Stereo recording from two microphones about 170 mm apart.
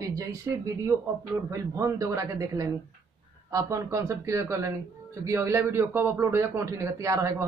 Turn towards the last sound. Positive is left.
turn(degrees=-20)  # may be behind; listen again after turning